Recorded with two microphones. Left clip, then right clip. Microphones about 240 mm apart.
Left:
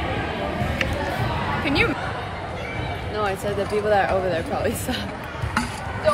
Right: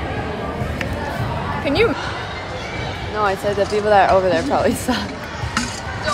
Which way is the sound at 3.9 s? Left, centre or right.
Centre.